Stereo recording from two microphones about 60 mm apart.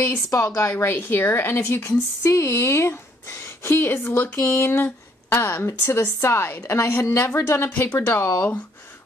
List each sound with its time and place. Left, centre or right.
0.3 s speech: left
0.6 s a woman's voice: left
4.5 s a woman's voice: left
5.3 s a woman's voice: left